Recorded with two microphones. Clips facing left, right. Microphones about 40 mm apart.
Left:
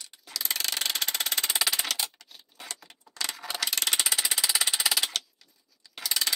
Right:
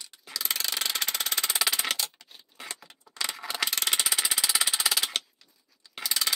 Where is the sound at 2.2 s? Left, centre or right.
Right.